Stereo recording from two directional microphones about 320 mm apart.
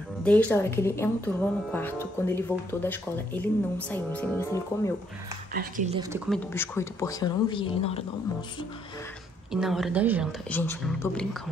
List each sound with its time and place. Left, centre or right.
0.2 s speech: centre
5.5 s speech: right
5.9 s speech: centre
9.5 s a woman's voice: centre
10.5 s a woman's voice: centre